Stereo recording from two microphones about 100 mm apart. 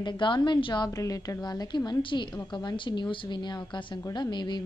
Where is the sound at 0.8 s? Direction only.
35° left (ahead or behind).